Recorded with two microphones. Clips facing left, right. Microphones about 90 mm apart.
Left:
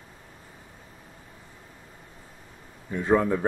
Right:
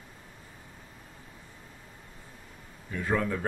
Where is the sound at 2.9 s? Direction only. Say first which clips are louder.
Left 7 dB; 25° left (ahead or behind).